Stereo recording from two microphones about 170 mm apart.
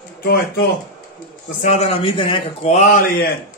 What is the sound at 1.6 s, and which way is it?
A man's voice, 40° left (ahead or behind).